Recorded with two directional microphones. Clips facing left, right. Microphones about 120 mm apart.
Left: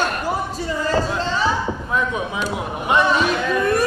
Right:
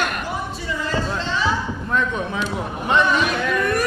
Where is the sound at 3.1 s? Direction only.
30° left (ahead or behind).